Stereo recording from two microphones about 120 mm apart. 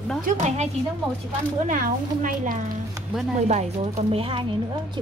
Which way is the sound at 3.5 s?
60° right (ahead or behind).